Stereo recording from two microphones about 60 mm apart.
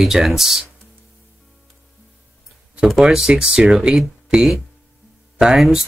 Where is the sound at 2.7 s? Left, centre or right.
Centre.